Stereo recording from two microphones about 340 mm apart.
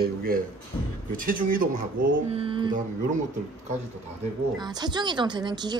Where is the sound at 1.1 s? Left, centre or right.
Right.